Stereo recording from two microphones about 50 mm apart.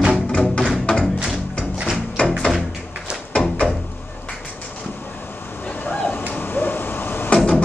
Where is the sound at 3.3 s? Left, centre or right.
Left.